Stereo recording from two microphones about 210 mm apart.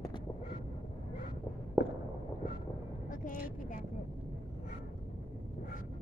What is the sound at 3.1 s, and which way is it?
Vehicle, 40° left (ahead or behind).